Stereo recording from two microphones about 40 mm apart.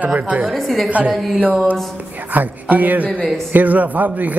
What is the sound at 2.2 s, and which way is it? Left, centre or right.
A man's voice, right.